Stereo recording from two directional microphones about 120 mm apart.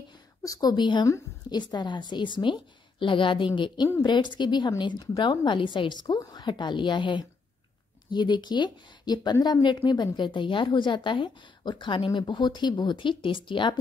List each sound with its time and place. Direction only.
0.4 s a woman's voice: 30° left (ahead or behind)